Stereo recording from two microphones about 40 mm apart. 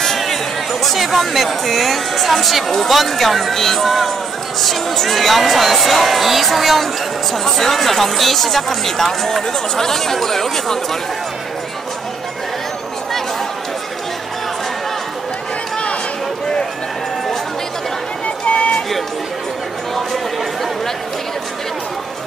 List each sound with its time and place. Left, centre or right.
0.8 s speech: centre
18.2 s run: left
18.7 s run: centre